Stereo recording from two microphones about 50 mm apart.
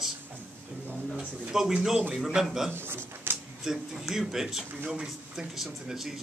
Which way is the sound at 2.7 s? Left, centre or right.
Right.